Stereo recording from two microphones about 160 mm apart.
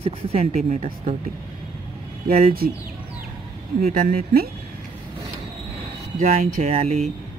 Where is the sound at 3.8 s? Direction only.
65° right (ahead or behind).